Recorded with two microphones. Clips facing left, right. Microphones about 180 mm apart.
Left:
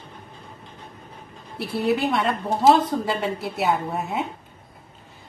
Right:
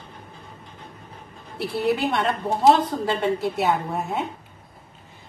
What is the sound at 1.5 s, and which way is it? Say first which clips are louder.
A woman's voice: even; centre (ahead or behind).